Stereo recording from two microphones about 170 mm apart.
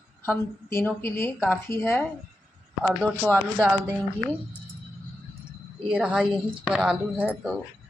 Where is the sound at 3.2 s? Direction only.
5° right (ahead or behind).